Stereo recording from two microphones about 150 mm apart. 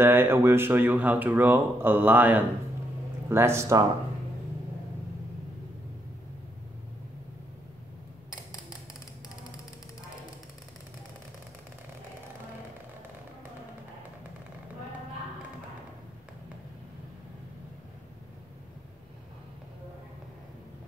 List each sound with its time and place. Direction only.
0.0 s speech: 15° right (ahead or behind)